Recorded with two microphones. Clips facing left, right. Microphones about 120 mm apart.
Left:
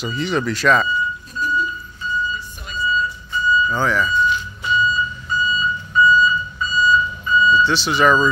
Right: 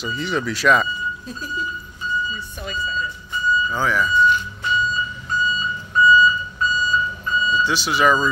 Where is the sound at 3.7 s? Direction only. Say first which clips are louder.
Left 1 dB; 5° right (ahead or behind).